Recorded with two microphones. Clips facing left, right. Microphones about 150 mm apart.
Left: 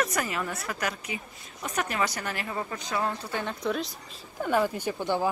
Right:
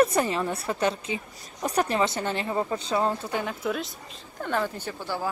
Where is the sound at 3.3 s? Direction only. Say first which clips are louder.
Right 1 dB; 5° right (ahead or behind).